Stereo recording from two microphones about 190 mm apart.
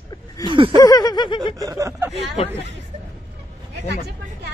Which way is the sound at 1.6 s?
15° right (ahead or behind).